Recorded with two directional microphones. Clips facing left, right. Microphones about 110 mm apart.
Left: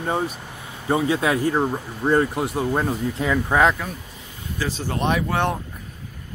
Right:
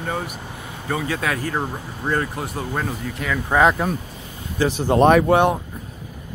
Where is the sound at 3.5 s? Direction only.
Centre (ahead or behind).